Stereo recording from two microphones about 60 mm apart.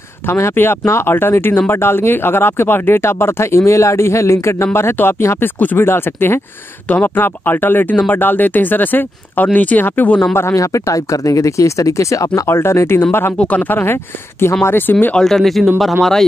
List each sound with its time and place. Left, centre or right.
0.3 s speech: left
5.0 s speech: left
5.8 s speech: left
10.5 s speech: left
12.4 s speech: left
13.4 s speech: left
15.1 s speech: centre